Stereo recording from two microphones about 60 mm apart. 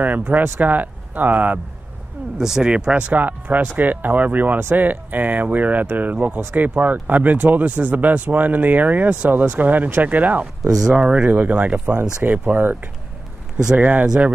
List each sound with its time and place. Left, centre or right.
0.0 s speech: right
2.3 s speech: centre
3.2 s speech: right
10.4 s speech: centre
11.8 s speech: right